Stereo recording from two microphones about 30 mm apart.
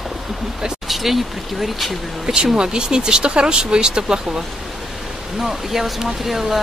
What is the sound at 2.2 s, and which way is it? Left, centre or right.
Speech, right.